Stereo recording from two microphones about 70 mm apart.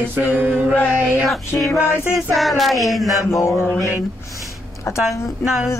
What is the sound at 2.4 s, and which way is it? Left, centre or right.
Speech, centre.